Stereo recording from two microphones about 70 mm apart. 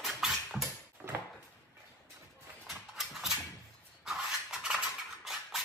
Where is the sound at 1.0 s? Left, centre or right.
Right.